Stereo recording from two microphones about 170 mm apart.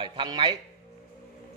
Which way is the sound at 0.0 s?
30° right (ahead or behind).